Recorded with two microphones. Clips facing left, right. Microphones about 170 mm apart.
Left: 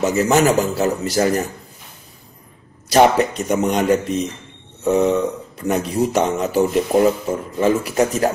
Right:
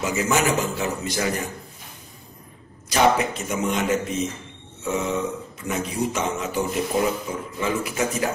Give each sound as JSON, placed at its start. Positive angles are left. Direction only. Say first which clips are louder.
{"t": 0.0, "sound": "speech", "louder": "left 7 dB", "side_deg": 40}
{"t": 2.9, "sound": "speech", "louder": "left 6 dB", "side_deg": 40}
{"t": 4.8, "sound": "burping", "louder": "left 10 dB", "side_deg": 40}
{"t": 5.6, "sound": "speech", "louder": "left 7 dB", "side_deg": 40}